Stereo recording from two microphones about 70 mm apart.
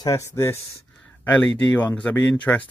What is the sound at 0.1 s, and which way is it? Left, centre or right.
Speech, left.